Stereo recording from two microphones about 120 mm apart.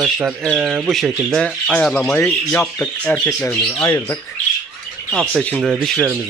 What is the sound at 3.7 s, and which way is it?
Speech, 25° left (ahead or behind).